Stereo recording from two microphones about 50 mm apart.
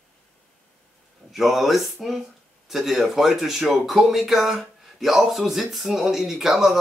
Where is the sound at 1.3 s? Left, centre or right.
Centre.